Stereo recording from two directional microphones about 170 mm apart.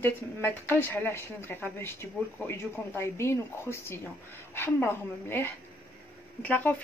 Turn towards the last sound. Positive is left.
turn(degrees=10)  # may be behind; listen again after turning